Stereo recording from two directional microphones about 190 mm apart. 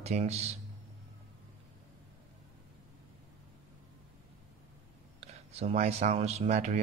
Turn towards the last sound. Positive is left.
turn(degrees=-35)  # may be behind; listen again after turning